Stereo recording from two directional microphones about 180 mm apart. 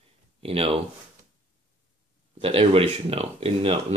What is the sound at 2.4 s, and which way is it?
Speech, 30° right (ahead or behind).